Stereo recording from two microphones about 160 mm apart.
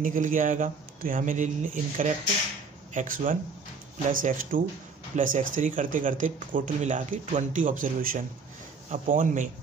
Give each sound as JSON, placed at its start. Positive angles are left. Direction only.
{"t": 0.0, "sound": "speech", "side_deg": -55}